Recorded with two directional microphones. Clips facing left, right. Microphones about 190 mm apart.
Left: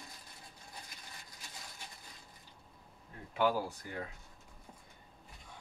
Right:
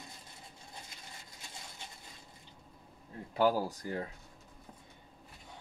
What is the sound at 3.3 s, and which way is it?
Speech, 40° right (ahead or behind).